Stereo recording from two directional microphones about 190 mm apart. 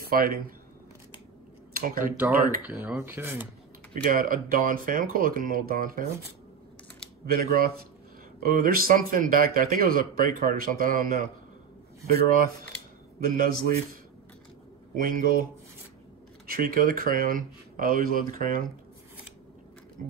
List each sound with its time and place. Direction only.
0.0 s speech: 50° right (ahead or behind)
1.7 s speech: 50° right (ahead or behind)
2.6 s speech: 10° right (ahead or behind)
3.9 s a man's voice: 45° right (ahead or behind)
7.3 s a man's voice: 50° right (ahead or behind)
13.2 s a man's voice: 50° right (ahead or behind)
15.0 s a man's voice: 45° right (ahead or behind)
16.4 s a man's voice: 50° right (ahead or behind)